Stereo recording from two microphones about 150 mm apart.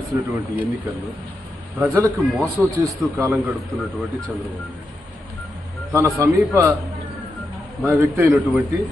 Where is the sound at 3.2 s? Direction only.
15° right (ahead or behind).